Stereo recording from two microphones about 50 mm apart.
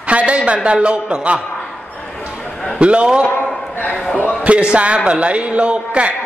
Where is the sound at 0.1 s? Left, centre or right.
Right.